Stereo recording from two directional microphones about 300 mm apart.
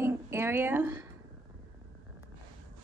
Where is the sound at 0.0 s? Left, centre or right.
Centre.